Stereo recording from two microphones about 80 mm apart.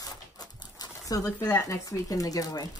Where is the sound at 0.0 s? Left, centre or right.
Left.